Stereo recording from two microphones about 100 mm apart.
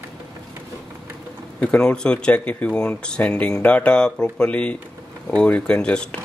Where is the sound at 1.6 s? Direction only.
10° left (ahead or behind).